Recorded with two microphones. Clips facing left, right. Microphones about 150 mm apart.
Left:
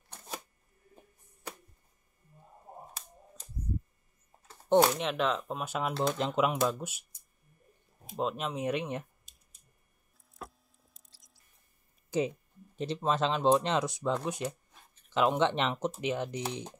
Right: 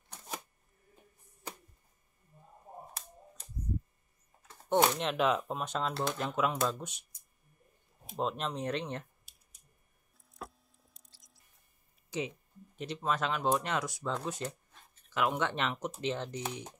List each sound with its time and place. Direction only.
4.5 s a sound: 30° left (ahead or behind)
4.8 s speech: centre (ahead or behind); by 6.6 s 20° left (ahead or behind)
6.6 s speech: 5° left (ahead or behind)
8.2 s speech: 5° left (ahead or behind)
10.3 s a sound: centre (ahead or behind)
12.7 s speech: 30° left (ahead or behind); by 14.8 s 15° left (ahead or behind)
15.0 s speech: 25° left (ahead or behind)
16.4 s speech: 25° left (ahead or behind)